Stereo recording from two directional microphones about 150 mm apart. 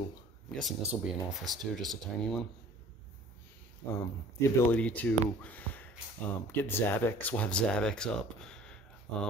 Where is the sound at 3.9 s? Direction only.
20° left (ahead or behind).